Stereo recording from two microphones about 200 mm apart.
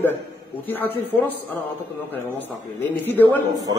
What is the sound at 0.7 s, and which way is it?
Speech, 10° left (ahead or behind).